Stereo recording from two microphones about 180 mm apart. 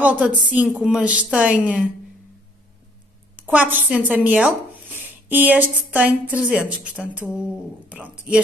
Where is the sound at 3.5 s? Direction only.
10° right (ahead or behind).